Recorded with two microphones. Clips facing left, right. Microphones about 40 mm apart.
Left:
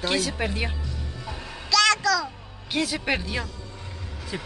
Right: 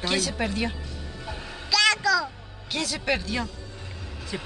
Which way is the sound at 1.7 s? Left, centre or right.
Centre.